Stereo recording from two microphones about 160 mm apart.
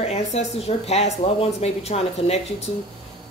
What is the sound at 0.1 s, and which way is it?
A woman's voice, 40° left (ahead or behind).